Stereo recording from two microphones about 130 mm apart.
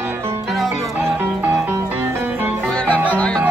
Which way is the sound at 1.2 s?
15° right (ahead or behind).